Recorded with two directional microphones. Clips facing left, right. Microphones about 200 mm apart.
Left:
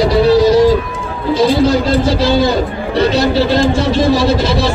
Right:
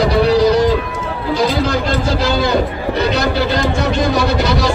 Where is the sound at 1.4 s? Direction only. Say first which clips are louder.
Left 5 dB; 30° left (ahead or behind).